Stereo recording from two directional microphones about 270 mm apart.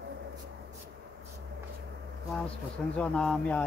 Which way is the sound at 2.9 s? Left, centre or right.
Centre.